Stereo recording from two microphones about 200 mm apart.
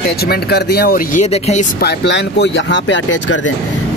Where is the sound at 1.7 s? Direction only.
60° left (ahead or behind).